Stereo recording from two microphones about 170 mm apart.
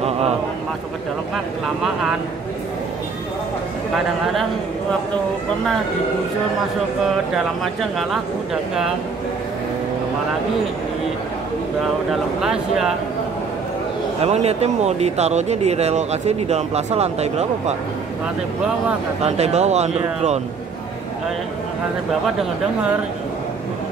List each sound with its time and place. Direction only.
1.3 s speech: centre (ahead or behind)
3.9 s speech: centre (ahead or behind)
7.6 s speech: centre (ahead or behind)
12.1 s speech: centre (ahead or behind)
14.2 s speech: 40° right (ahead or behind)
19.2 s speech: 40° right (ahead or behind)